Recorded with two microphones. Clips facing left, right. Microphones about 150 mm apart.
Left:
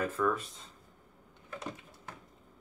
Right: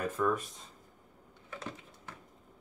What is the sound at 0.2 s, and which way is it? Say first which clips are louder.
Speech: even; 15° right (ahead or behind).